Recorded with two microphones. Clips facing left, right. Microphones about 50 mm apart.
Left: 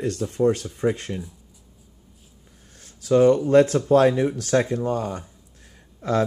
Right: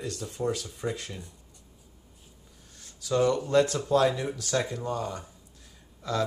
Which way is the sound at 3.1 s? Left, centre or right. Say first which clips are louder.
Left 8 dB; left.